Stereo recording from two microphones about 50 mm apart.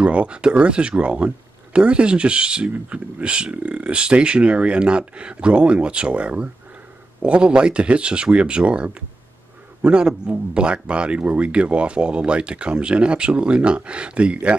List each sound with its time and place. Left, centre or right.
0.0 s speech: right